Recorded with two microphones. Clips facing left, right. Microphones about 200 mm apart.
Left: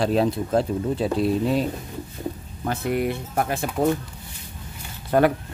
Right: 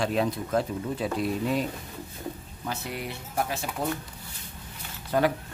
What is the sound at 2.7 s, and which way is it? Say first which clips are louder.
Speech: left 10 dB; 55° left (ahead or behind).